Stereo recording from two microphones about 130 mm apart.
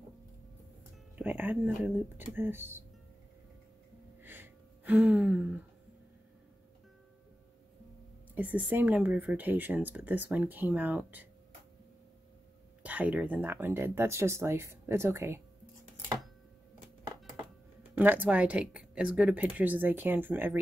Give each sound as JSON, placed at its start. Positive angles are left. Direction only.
{"t": 1.1, "sound": "speech", "side_deg": -15}
{"t": 4.2, "sound": "gasp", "side_deg": -15}
{"t": 8.4, "sound": "speech", "side_deg": -10}
{"t": 12.8, "sound": "speech", "side_deg": -10}
{"t": 17.9, "sound": "speech", "side_deg": -15}